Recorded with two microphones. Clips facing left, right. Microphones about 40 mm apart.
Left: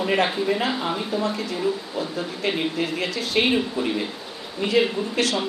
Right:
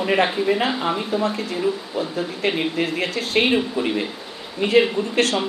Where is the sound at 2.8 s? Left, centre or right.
Right.